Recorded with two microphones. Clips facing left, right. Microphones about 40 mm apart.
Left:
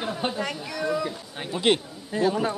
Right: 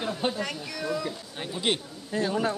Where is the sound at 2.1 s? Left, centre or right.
Centre.